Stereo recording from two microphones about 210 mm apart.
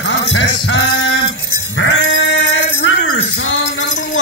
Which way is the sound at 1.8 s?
65° left (ahead or behind).